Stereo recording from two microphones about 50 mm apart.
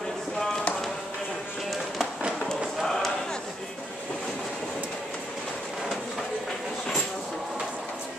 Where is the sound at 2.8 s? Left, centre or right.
Centre.